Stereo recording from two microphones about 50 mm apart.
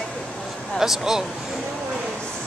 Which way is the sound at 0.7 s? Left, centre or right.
Centre.